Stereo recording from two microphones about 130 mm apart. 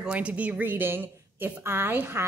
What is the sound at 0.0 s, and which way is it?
A woman's voice, 10° right (ahead or behind).